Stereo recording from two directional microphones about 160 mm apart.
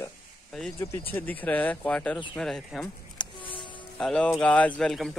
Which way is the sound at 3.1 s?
30° left (ahead or behind).